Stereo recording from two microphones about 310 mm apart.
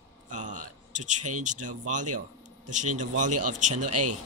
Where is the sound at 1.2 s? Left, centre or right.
Right.